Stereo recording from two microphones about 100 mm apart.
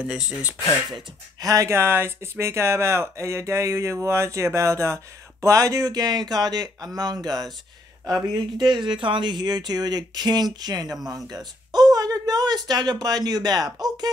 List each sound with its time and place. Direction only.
0.0 s speech: 5° right (ahead or behind)
1.4 s speech: 35° right (ahead or behind)
11.1 s a sound: 40° right (ahead or behind)
12.6 s speech: 40° right (ahead or behind)